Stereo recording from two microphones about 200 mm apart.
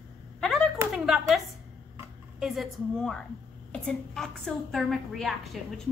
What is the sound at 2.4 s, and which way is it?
A woman's voice, centre (ahead or behind).